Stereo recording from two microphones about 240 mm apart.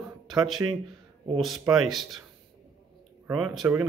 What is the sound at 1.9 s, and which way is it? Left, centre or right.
Speech, centre.